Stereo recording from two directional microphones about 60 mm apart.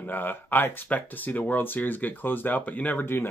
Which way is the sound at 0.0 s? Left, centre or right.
Left.